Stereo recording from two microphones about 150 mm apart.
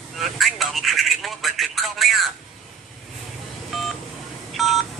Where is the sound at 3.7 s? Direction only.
Centre (ahead or behind).